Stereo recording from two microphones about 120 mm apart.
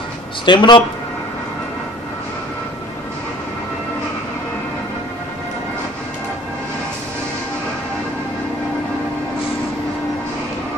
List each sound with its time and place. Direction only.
0.5 s speech: 40° left (ahead or behind)